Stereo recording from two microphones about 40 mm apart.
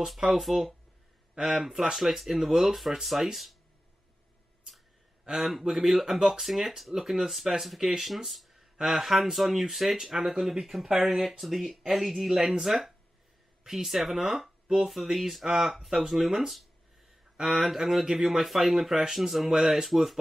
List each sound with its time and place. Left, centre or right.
0.0 s speech: centre
1.3 s speech: centre
5.4 s speech: centre
10.9 s speech: centre
11.3 s speech: centre